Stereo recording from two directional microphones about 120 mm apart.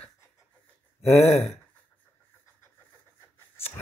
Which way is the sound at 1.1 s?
25° left (ahead or behind).